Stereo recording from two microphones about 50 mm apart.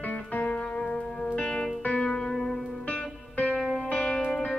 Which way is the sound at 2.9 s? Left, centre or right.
Left.